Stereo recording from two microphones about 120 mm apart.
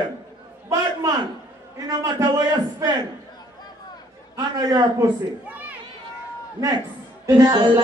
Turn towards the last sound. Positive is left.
turn(degrees=-35)  # may be behind; listen again after turning